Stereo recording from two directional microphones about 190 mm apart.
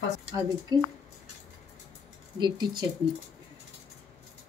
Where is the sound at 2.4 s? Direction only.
20° right (ahead or behind).